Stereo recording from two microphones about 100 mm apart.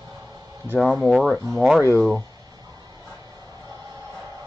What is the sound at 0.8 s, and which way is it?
Speech, centre (ahead or behind).